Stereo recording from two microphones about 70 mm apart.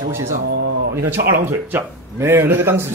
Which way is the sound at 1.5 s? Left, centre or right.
Right.